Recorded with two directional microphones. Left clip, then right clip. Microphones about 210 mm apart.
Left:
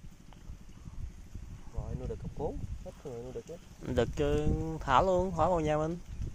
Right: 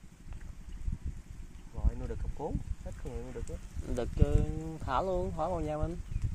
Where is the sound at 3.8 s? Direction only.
20° left (ahead or behind).